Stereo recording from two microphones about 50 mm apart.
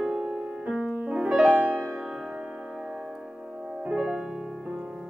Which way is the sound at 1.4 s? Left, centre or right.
Right.